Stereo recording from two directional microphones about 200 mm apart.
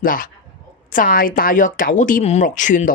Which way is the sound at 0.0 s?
45° left (ahead or behind).